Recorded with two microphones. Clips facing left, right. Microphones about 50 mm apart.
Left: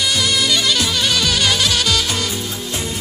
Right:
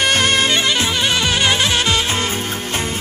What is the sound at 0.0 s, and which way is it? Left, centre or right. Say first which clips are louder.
Music: right 3 dB; right.